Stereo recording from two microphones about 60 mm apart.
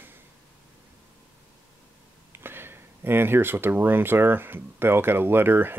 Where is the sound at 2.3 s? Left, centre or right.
Right.